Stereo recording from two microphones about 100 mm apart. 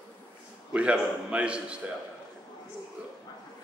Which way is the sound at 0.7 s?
10° right (ahead or behind).